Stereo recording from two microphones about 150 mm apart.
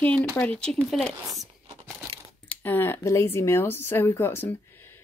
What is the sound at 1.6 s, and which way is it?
Tearing, 30° right (ahead or behind).